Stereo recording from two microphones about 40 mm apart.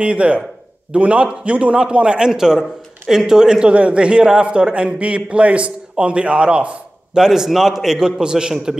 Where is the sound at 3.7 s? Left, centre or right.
Right.